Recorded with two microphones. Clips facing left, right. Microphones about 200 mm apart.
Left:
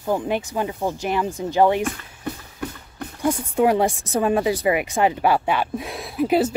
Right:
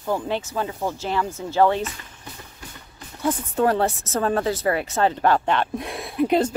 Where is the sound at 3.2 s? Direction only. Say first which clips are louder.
Left 2 dB; 10° left (ahead or behind).